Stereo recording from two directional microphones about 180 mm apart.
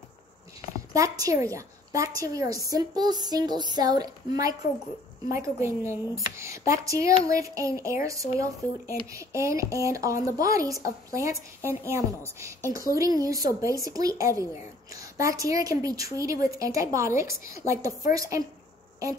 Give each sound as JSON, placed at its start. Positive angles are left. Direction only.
{"t": 0.9, "sound": "a woman's voice", "side_deg": -20}